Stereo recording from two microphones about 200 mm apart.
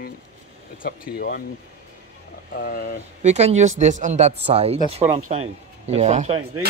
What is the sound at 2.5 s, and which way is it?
Speech, 45° left (ahead or behind).